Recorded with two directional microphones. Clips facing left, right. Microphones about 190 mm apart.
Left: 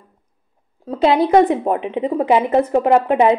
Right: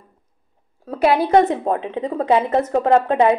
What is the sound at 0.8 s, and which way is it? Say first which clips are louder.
A woman's voice: left 2 dB; 20° left (ahead or behind).